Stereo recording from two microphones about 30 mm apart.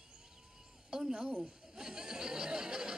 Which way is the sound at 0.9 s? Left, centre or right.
Right.